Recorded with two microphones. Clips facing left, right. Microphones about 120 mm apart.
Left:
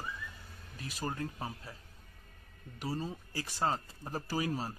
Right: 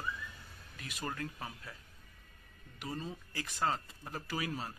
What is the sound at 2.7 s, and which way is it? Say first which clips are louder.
Speech: left 4 dB; 35° left (ahead or behind).